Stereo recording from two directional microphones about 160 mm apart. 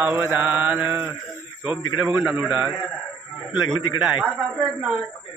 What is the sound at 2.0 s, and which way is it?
Speech, 5° right (ahead or behind).